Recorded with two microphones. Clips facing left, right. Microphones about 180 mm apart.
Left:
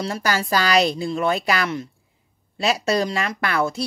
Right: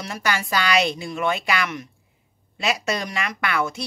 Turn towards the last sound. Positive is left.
turn(degrees=35)  # may be behind; listen again after turning